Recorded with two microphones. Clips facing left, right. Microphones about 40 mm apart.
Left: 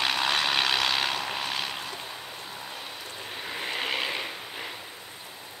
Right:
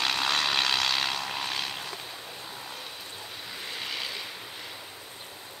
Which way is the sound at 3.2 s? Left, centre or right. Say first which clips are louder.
Left 7 dB; left.